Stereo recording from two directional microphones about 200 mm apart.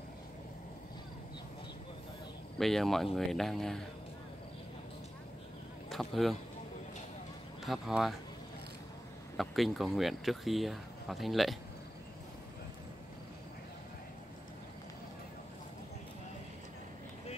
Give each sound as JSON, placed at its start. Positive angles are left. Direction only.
{"t": 2.6, "sound": "speech", "side_deg": 0}
{"t": 5.9, "sound": "speech", "side_deg": 0}
{"t": 7.6, "sound": "speech", "side_deg": 0}
{"t": 9.4, "sound": "speech", "side_deg": 0}